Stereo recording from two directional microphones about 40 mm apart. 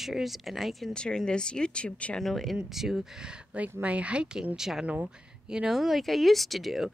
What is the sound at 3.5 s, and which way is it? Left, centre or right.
Speech, right.